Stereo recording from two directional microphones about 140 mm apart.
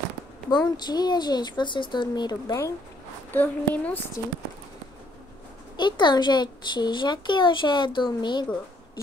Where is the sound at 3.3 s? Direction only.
10° left (ahead or behind).